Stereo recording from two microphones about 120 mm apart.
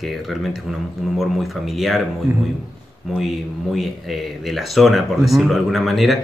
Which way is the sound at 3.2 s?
Centre (ahead or behind).